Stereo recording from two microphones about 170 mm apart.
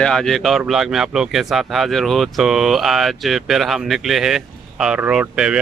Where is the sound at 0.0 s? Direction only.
5° left (ahead or behind).